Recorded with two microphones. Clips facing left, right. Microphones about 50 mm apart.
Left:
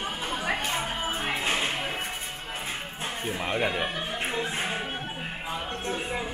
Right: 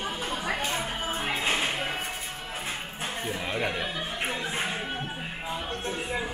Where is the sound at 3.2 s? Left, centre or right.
Left.